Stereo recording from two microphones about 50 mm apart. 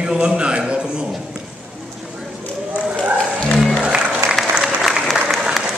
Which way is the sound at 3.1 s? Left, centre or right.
Left.